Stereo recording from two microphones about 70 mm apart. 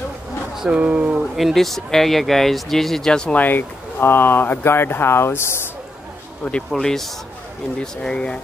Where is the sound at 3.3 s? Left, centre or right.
Left.